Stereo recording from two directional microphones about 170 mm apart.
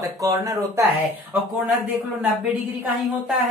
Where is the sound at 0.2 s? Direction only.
20° right (ahead or behind).